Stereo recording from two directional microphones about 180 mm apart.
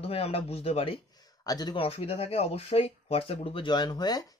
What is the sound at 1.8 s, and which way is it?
Speech, 35° left (ahead or behind).